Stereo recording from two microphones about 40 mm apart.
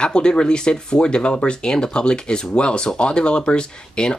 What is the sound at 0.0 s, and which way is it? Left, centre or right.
Speech, left.